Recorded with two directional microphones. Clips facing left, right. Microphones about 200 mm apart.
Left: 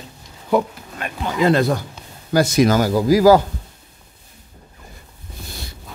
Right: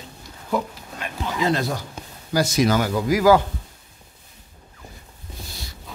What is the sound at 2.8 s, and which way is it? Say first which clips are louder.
Speech: left 5 dB; 35° left (ahead or behind).